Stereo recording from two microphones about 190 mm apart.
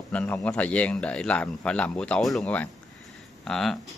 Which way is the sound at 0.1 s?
10° left (ahead or behind).